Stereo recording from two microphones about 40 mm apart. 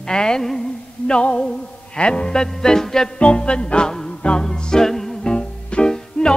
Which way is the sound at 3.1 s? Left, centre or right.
Left.